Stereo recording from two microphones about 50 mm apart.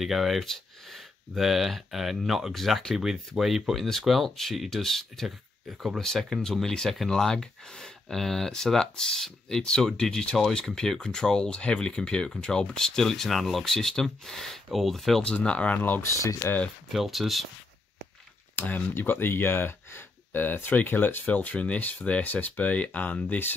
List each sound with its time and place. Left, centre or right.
0.0 s speech: centre
15.2 s speech: left
16.0 s speech: left
16.9 s speech: centre
18.6 s speech: left
21.3 s speech: left